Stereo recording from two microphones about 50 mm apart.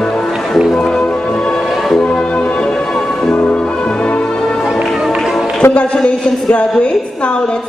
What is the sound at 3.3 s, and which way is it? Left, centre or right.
Music, left.